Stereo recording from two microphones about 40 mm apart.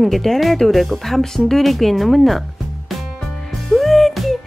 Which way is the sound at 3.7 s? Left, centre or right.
Centre.